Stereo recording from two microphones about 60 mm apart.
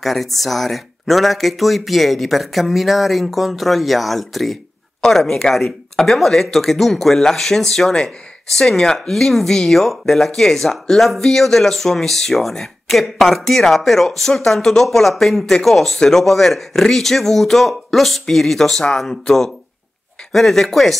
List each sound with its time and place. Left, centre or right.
0.0 s speech: centre